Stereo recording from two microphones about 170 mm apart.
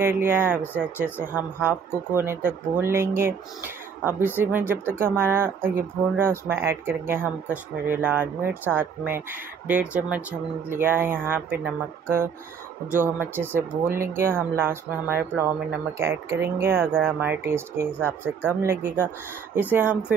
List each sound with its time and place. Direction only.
0.0 s speech: 15° right (ahead or behind)